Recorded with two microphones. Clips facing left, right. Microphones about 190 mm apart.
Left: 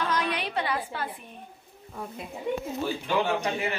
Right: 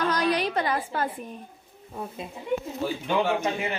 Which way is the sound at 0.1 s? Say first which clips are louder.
Right 4 dB; 40° right (ahead or behind).